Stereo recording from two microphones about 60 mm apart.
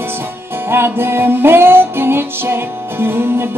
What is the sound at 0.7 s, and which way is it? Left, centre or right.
Music, right.